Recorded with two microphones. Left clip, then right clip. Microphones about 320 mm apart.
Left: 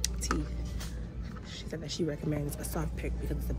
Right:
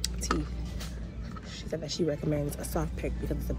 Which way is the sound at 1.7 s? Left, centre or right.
Centre.